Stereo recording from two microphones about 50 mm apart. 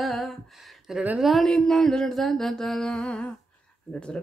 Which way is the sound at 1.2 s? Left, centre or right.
Centre.